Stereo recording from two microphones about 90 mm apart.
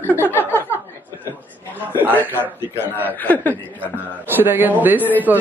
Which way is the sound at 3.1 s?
20° left (ahead or behind).